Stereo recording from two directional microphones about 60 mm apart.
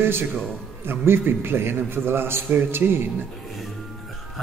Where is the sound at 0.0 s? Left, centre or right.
Right.